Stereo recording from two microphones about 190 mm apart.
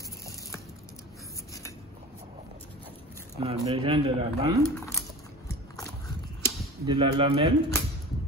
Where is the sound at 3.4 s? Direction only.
30° right (ahead or behind).